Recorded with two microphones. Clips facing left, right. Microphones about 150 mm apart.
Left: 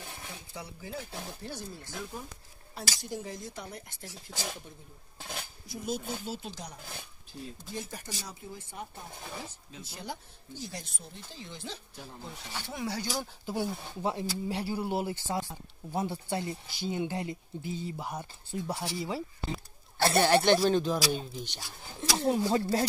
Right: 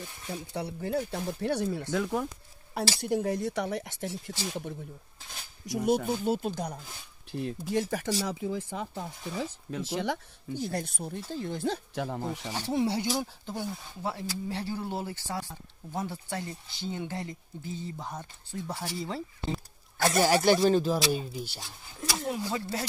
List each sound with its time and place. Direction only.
0.3 s speech: 65° right (ahead or behind)
3.0 s speech: 65° right (ahead or behind); by 4.2 s 80° right
5.7 s speech: 70° right (ahead or behind); by 6.8 s 55° right (ahead or behind)
7.3 s speech: 70° right (ahead or behind)
7.9 s speech: 85° right
10.5 s speech: 55° right (ahead or behind)
11.9 s speech: 80° right
12.5 s speech: 35° right (ahead or behind)
13.5 s speech: 15° left (ahead or behind)
20.2 s speech: 5° right (ahead or behind)
22.1 s speech: 30° left (ahead or behind)